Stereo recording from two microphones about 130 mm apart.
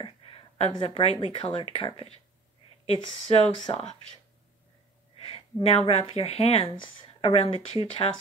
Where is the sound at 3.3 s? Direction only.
50° left (ahead or behind).